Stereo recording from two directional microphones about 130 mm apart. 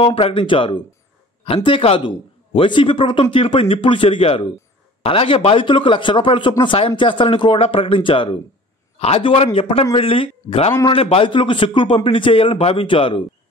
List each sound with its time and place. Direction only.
0.0 s a man's voice: 45° left (ahead or behind)